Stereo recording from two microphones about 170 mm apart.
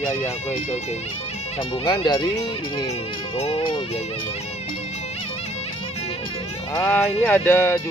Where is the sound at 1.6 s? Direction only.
25° left (ahead or behind).